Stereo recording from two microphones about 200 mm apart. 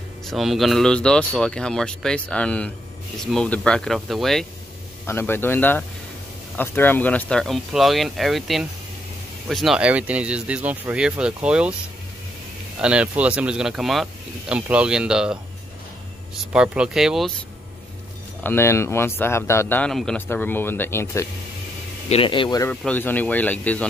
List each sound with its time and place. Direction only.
0.3 s speech: centre (ahead or behind)
5.0 s speech: 10° left (ahead or behind); by 11.7 s 5° right (ahead or behind)
12.8 s speech: 5° right (ahead or behind)
16.5 s speech: 5° right (ahead or behind)
18.4 s speech: 10° left (ahead or behind)
22.1 s speech: 25° left (ahead or behind)
22.7 s speech: 10° left (ahead or behind)